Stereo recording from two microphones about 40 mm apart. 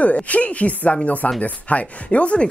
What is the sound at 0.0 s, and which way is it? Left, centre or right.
Speech, left.